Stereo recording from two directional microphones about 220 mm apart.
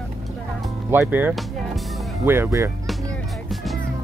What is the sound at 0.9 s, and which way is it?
Speech, 10° right (ahead or behind).